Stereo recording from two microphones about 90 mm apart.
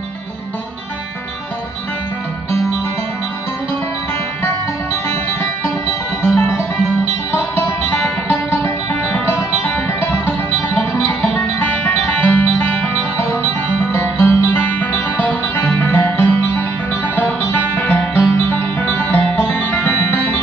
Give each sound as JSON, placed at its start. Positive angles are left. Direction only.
{"t": 6.2, "sound": "music", "side_deg": 25}